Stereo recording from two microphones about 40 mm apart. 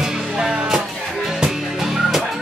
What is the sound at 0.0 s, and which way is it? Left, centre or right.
Music, centre.